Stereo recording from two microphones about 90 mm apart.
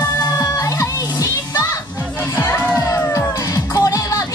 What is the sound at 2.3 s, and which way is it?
Music, 25° left (ahead or behind).